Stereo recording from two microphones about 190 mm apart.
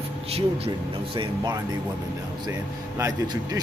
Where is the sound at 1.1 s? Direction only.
25° right (ahead or behind).